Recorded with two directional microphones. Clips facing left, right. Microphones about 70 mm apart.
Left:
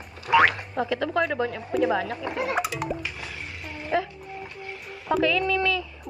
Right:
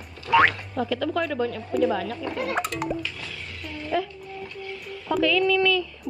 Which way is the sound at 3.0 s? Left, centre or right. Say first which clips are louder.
Even; left.